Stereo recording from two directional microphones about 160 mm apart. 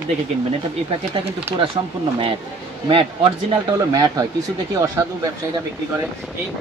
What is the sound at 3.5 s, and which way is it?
Speech, 25° right (ahead or behind).